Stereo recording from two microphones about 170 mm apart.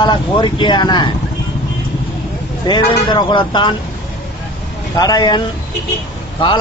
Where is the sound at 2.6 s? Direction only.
25° left (ahead or behind).